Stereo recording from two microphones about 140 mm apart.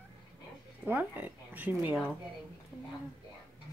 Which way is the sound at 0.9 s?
10° right (ahead or behind).